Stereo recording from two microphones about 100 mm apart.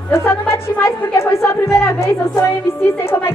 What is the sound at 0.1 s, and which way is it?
A woman's voice, 25° left (ahead or behind).